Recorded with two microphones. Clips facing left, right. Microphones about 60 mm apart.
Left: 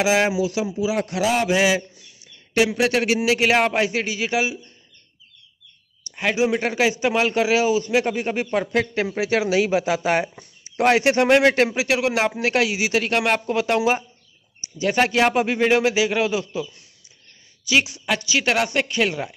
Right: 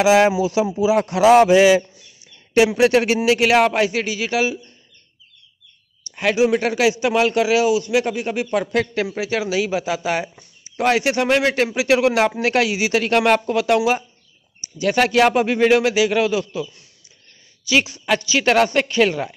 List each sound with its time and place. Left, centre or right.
0.0 s speech: centre
0.7 s speech: centre
1.2 s a man's voice: right
1.5 s speech: centre
3.1 s a man's voice: centre
6.5 s a man's voice: left
7.3 s a man's voice: left
8.5 s a man's voice: left
9.2 s a man's voice: left
11.9 s a man's voice: centre
13.6 s a man's voice: left
17.6 s a man's voice: centre